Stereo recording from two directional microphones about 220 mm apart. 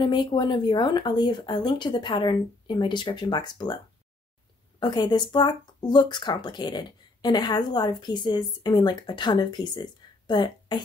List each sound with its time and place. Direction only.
0.0 s speech: 20° left (ahead or behind)